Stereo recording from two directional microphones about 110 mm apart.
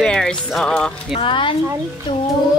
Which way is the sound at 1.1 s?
50° left (ahead or behind).